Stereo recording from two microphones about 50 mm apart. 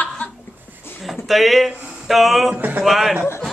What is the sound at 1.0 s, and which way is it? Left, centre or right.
Speech, centre.